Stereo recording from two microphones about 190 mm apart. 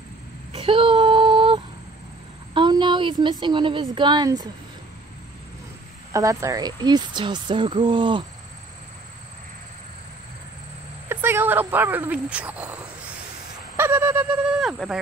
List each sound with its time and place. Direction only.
0.5 s a sound: 30° right (ahead or behind)
2.5 s a woman's voice: 25° right (ahead or behind)
6.1 s speech: 15° right (ahead or behind)
11.1 s speech: 10° right (ahead or behind)
13.7 s owl: 10° right (ahead or behind)